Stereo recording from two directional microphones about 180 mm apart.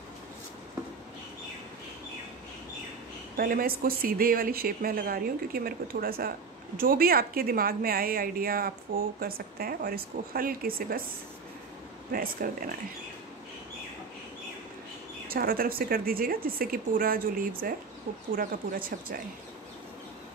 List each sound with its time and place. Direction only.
3.3 s a woman's voice: 55° right (ahead or behind)
12.1 s speech: 50° right (ahead or behind)
15.2 s a woman's voice: 55° right (ahead or behind)